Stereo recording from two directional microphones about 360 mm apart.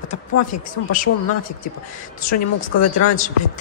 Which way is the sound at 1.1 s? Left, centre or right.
Left.